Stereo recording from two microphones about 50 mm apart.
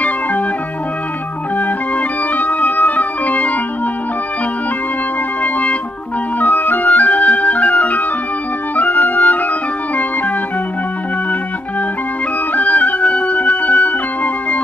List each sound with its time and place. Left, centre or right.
1.6 s organ: left
5.4 s music: left
12.5 s music: left